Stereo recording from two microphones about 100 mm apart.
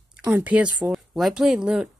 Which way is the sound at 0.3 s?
15° right (ahead or behind).